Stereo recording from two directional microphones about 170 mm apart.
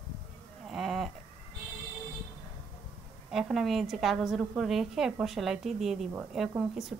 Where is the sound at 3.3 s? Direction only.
Centre (ahead or behind).